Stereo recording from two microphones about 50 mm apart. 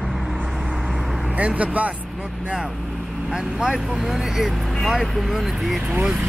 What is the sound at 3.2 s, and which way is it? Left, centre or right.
Speech, centre.